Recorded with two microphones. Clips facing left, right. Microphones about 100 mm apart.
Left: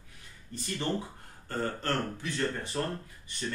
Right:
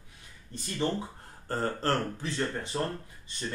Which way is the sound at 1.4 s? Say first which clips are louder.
Right 3 dB; 35° right (ahead or behind).